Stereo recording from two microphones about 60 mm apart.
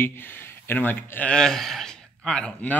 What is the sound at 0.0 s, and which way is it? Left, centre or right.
Speech, left.